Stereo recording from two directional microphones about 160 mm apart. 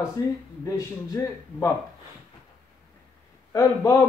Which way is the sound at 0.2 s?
20° left (ahead or behind).